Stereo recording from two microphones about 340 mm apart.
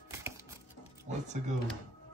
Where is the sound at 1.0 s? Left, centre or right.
Centre.